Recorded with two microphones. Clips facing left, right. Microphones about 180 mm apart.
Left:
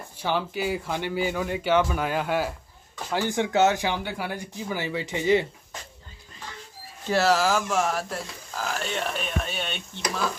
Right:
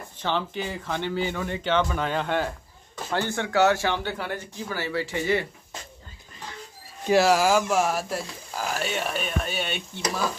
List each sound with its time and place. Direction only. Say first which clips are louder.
0.2 s speech: left 1 dB; 10° left (ahead or behind)
7.1 s speech: right 3 dB; 10° right (ahead or behind)